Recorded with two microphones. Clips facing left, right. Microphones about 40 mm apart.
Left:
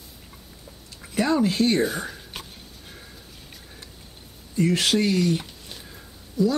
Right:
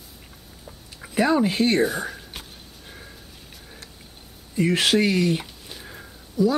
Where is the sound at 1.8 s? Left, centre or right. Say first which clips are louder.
Right 2 dB; right.